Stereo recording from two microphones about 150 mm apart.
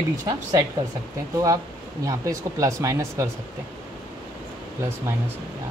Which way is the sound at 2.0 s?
20° right (ahead or behind).